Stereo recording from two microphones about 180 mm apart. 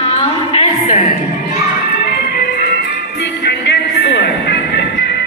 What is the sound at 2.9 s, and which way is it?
Music, 65° left (ahead or behind).